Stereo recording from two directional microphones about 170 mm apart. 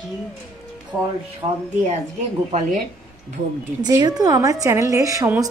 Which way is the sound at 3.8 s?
25° right (ahead or behind).